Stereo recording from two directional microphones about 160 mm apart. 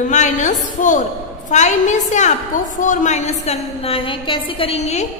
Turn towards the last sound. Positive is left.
turn(degrees=40)  # may be behind; listen again after turning